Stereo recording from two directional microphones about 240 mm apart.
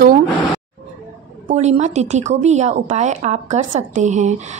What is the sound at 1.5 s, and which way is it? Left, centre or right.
A woman's voice, right.